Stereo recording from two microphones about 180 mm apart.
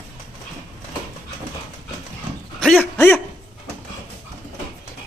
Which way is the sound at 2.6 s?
5° left (ahead or behind).